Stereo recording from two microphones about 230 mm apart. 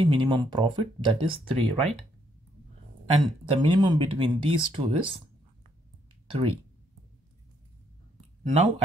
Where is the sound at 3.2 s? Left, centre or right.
Right.